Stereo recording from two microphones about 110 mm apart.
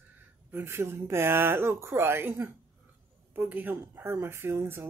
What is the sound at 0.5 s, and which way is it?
Speech, 20° right (ahead or behind).